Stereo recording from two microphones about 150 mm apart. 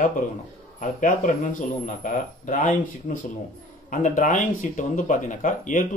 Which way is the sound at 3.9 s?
55° left (ahead or behind).